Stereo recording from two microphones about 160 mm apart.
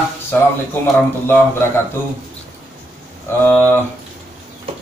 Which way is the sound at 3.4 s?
10° left (ahead or behind).